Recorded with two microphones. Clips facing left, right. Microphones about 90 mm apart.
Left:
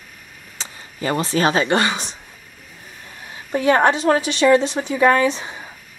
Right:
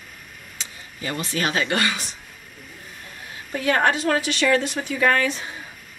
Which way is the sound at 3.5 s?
25° left (ahead or behind).